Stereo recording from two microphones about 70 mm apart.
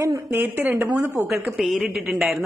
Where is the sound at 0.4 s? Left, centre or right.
Right.